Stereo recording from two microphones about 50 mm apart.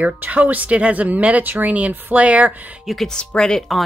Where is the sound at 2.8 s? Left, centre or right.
Centre.